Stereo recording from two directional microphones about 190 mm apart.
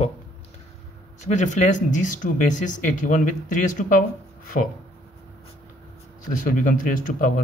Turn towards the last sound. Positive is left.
turn(degrees=45)  # may be behind; listen again after turning